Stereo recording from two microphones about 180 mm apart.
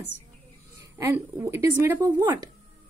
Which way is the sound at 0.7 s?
15° right (ahead or behind).